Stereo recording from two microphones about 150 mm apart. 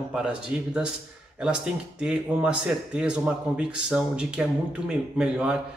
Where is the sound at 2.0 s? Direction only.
5° right (ahead or behind).